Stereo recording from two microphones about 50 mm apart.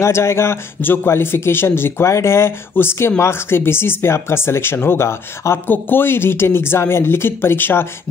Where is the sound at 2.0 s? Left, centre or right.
Left.